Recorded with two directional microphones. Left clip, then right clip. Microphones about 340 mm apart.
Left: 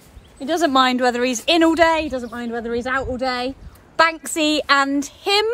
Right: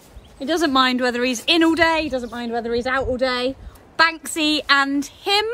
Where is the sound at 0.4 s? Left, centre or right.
Centre.